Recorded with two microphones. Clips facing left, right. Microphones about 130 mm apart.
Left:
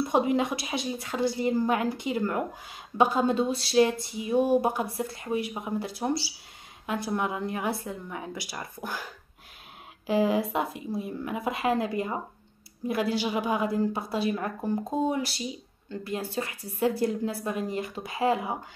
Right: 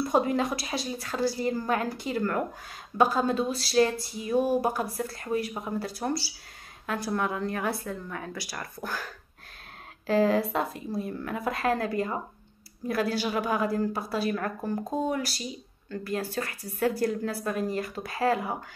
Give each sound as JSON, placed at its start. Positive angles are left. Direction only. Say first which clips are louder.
{"t": 0.0, "sound": "a woman's voice", "louder": "left 1 dB", "side_deg": 20}